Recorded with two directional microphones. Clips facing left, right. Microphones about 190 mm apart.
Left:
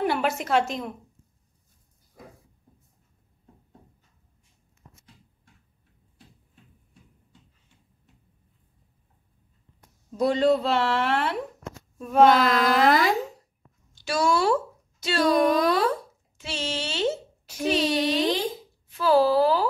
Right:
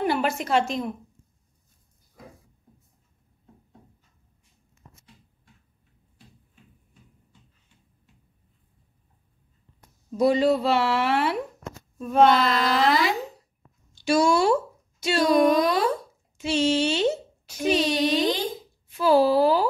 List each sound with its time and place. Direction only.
0.0 s speech: centre (ahead or behind)
10.1 s speech: 5° right (ahead or behind)
12.0 s speech: 5° left (ahead or behind)
12.4 s a sound: 45° left (ahead or behind)
14.0 s speech: 15° right (ahead or behind)